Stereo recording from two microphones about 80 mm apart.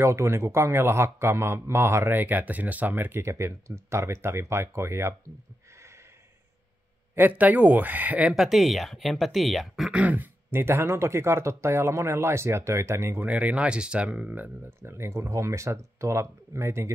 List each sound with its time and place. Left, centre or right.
0.0 s speech: right
3.3 s speech: right
7.2 s speech: right
8.3 s speech: centre
9.9 s speech: right
13.2 s speech: centre
14.8 s speech: right